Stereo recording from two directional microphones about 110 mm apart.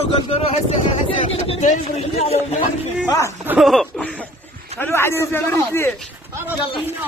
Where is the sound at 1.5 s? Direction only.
70° left (ahead or behind).